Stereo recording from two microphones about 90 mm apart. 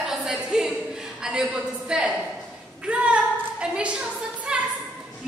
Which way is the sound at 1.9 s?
10° right (ahead or behind).